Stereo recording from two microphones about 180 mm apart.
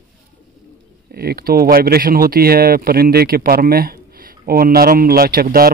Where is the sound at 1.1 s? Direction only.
60° right (ahead or behind).